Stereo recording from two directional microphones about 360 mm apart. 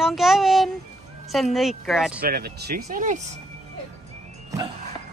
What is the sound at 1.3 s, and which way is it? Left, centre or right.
Speech, centre.